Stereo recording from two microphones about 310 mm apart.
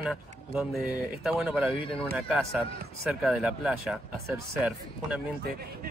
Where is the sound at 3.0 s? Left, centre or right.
Centre.